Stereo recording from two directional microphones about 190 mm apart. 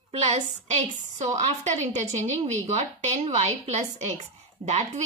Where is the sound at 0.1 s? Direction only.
35° right (ahead or behind).